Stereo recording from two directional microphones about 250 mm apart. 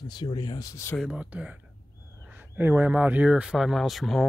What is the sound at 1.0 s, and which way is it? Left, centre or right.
Speech, centre.